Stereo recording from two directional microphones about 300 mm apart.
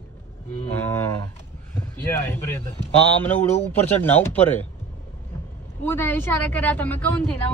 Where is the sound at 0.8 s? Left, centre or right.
Centre.